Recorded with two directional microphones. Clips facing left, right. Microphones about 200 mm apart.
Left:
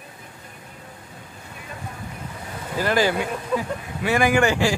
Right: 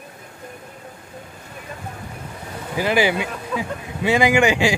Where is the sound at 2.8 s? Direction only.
15° right (ahead or behind).